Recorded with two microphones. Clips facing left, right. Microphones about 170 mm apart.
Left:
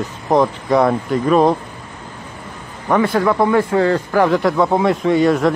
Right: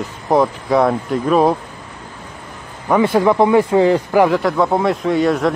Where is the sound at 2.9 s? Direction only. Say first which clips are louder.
Right 2 dB; 10° right (ahead or behind).